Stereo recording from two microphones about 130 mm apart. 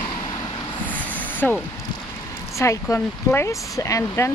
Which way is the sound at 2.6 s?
20° left (ahead or behind).